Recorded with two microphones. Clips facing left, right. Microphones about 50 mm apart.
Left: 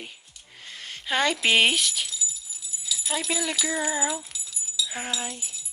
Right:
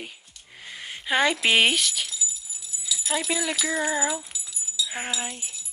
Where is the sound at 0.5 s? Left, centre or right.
Centre.